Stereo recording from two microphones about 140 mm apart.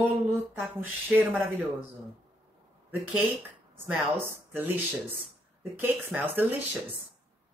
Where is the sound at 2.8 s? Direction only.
15° right (ahead or behind).